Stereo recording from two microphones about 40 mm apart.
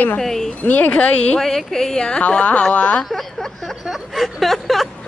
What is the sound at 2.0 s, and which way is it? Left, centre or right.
Speech, left.